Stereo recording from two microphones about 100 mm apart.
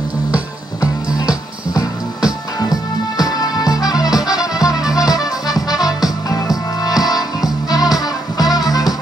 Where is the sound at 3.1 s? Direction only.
40° left (ahead or behind).